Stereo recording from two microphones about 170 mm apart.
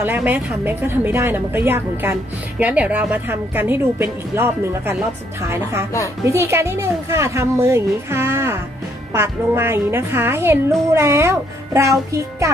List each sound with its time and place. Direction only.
0.0 s a woman's voice: 10° right (ahead or behind)